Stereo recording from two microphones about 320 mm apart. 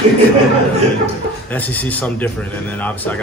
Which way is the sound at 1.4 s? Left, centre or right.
Centre.